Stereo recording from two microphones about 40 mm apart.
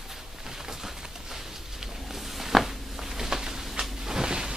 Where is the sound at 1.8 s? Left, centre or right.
Centre.